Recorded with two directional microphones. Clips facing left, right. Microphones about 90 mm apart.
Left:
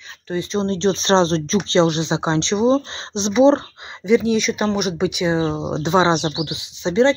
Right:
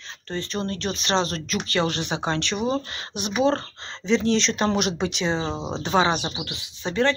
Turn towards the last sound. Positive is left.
turn(degrees=20)  # may be behind; listen again after turning